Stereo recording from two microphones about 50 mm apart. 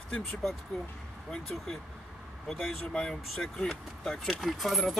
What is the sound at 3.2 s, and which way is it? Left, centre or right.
Speech, centre.